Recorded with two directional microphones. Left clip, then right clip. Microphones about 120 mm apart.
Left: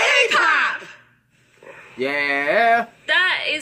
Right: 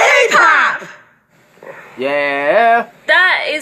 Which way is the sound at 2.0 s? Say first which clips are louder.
Right 5 dB; centre (ahead or behind).